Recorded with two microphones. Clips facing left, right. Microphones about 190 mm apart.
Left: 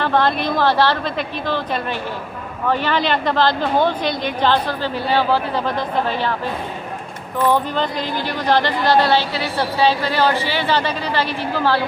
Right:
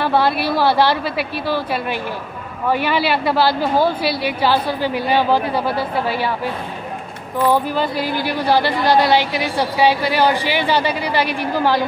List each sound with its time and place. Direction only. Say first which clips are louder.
0.0 s speech: right 1 dB; 10° right (ahead or behind)